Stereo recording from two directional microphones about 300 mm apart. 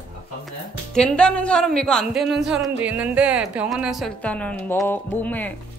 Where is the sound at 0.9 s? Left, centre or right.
Centre.